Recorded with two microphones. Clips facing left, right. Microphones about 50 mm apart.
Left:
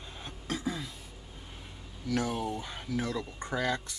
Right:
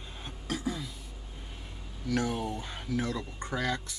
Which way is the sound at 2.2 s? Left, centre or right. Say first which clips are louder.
Even; centre.